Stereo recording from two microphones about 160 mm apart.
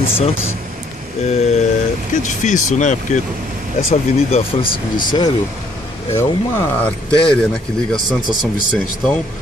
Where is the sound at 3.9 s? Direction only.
40° left (ahead or behind).